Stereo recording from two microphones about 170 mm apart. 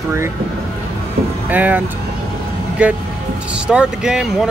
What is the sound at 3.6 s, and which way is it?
Speech, 5° right (ahead or behind).